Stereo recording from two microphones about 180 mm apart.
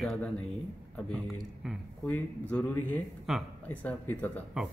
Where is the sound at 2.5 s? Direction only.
5° left (ahead or behind).